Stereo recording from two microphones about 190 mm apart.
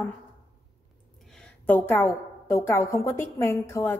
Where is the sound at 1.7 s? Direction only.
10° left (ahead or behind).